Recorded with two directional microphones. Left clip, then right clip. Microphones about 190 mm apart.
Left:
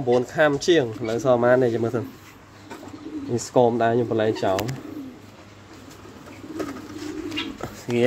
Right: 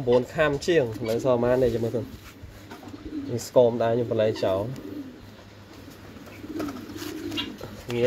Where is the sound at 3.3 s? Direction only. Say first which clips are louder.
Left 1 dB; 40° left (ahead or behind).